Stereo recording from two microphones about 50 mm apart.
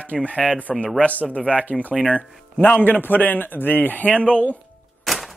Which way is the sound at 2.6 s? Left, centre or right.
Left.